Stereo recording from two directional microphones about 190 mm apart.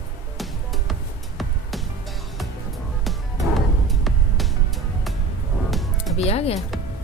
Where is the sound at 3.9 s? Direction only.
Centre (ahead or behind).